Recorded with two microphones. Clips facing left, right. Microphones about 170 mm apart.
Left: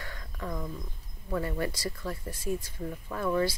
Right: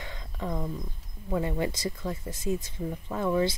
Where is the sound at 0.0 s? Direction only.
20° right (ahead or behind).